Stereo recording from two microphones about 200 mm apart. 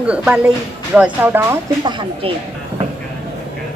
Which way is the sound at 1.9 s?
25° right (ahead or behind).